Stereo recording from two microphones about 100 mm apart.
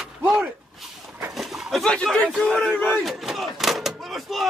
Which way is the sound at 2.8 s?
5° right (ahead or behind).